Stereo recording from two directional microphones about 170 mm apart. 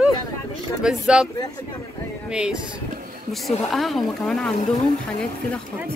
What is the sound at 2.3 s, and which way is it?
A woman's voice, 5° right (ahead or behind).